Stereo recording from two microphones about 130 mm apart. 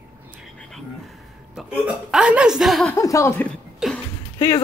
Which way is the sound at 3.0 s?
25° left (ahead or behind).